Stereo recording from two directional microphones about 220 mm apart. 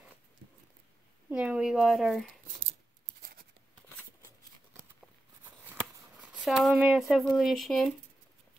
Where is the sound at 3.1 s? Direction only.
40° right (ahead or behind).